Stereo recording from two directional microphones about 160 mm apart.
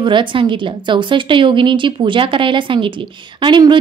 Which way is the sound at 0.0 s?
30° right (ahead or behind).